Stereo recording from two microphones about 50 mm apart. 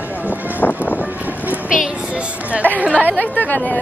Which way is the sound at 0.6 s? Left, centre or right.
Left.